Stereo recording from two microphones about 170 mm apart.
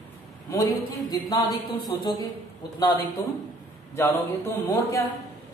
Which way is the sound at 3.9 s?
20° left (ahead or behind).